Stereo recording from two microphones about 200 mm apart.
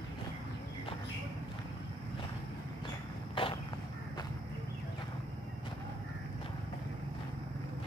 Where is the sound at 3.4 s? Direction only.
25° left (ahead or behind).